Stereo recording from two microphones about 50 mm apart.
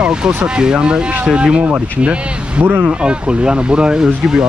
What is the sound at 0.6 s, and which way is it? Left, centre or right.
Speech, centre.